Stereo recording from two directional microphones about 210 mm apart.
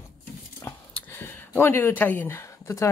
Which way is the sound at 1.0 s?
10° left (ahead or behind).